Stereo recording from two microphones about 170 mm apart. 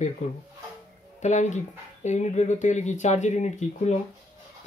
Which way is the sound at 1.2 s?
45° left (ahead or behind).